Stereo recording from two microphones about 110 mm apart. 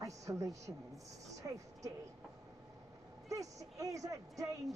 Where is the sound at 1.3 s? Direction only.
30° right (ahead or behind).